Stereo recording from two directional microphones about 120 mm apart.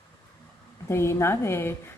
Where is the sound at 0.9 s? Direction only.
20° left (ahead or behind).